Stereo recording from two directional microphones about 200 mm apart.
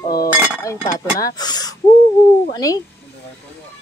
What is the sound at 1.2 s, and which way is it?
Speech, 20° left (ahead or behind).